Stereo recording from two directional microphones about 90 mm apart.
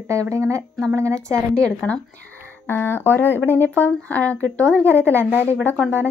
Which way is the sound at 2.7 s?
25° left (ahead or behind).